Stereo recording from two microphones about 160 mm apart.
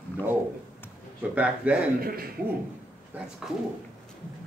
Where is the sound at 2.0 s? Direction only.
70° right (ahead or behind).